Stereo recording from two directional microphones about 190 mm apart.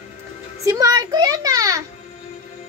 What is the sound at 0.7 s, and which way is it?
A child's voice, 20° right (ahead or behind).